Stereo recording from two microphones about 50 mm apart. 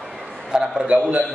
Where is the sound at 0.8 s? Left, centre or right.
Right.